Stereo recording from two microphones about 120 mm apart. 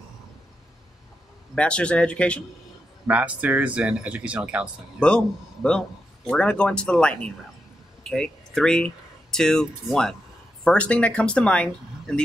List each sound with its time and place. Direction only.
1.5 s a man's voice: 10° left (ahead or behind)
3.1 s speech: 10° right (ahead or behind)
5.0 s a man's voice: 10° left (ahead or behind)